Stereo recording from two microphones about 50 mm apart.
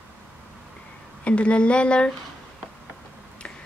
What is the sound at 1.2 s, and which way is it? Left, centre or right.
Speech, left.